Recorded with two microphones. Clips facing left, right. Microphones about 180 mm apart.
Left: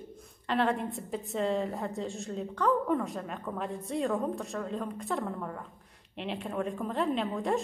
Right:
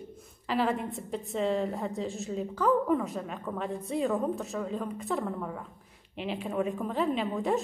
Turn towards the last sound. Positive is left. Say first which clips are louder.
# right 1 dB
turn(degrees=0)  # may be behind; listen again after turning